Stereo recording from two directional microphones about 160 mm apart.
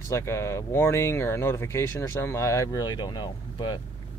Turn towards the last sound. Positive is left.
turn(degrees=30)  # may be behind; listen again after turning